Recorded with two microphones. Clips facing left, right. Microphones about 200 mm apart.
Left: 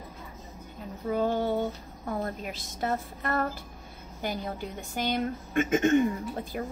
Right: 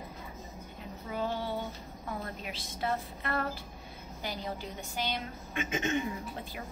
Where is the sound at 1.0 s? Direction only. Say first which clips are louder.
Left 8 dB; 45° left (ahead or behind).